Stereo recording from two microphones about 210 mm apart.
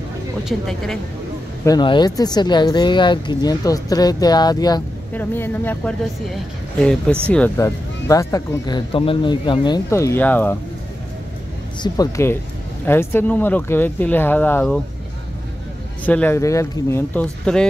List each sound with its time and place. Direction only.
0.5 s a woman's voice: centre (ahead or behind)
1.6 s speech: 20° left (ahead or behind)
11.8 s speech: 15° left (ahead or behind)
16.1 s speech: 10° left (ahead or behind)